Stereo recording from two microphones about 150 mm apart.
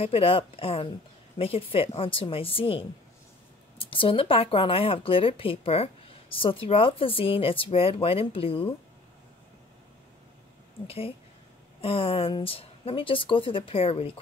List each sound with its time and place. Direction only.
0.0 s speech: 40° left (ahead or behind)
10.9 s speech: 40° left (ahead or behind)